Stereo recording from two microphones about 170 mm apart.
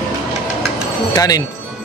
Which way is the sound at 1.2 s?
20° left (ahead or behind).